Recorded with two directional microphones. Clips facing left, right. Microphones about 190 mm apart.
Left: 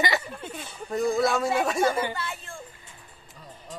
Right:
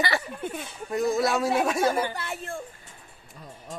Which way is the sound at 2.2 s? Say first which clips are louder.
Right 2 dB; 60° right (ahead or behind).